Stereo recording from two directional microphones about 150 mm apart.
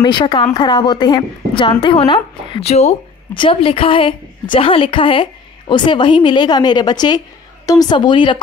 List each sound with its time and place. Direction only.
0.0 s a woman's voice: 30° left (ahead or behind)